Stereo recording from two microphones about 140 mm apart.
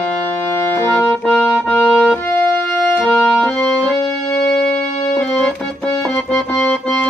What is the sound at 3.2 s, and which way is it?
Music, 20° left (ahead or behind).